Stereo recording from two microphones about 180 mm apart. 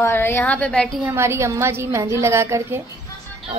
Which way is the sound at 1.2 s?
15° right (ahead or behind).